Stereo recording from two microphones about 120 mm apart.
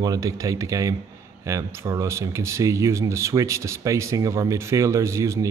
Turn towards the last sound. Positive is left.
turn(degrees=-25)  # may be behind; listen again after turning